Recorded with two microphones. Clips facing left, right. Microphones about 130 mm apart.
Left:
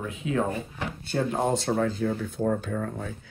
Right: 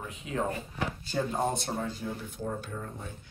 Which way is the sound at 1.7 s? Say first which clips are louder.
Left 8 dB; 60° left (ahead or behind).